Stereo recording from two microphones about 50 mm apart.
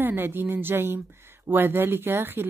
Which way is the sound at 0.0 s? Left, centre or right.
Right.